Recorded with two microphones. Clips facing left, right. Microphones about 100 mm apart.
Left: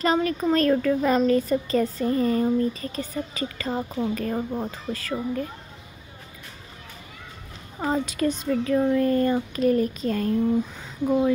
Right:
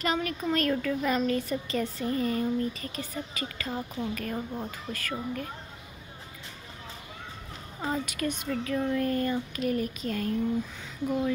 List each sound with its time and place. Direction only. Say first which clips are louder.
0.0 s speech: left 7 dB; 35° left (ahead or behind)
7.8 s speech: left 7 dB; 30° left (ahead or behind)